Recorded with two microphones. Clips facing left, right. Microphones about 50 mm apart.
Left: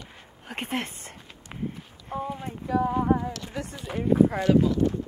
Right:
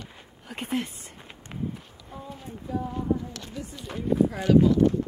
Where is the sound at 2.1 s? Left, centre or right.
Left.